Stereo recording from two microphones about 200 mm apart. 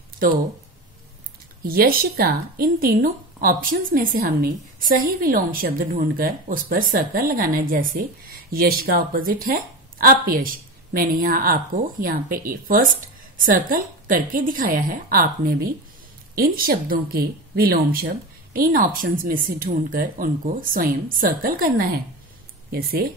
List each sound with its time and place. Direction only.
1.7 s speech: 50° right (ahead or behind)